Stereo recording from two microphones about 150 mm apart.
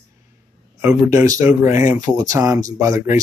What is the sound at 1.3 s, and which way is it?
Speech, 20° right (ahead or behind).